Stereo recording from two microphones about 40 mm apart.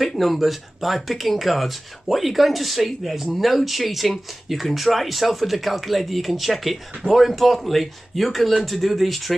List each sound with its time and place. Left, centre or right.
0.0 s speech: centre